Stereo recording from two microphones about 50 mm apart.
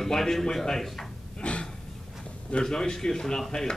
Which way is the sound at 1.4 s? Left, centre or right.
Left.